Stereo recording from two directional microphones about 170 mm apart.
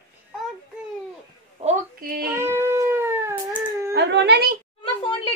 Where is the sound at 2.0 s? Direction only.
60° right (ahead or behind).